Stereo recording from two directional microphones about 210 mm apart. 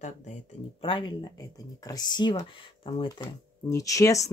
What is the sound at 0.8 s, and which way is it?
Speech, 25° left (ahead or behind).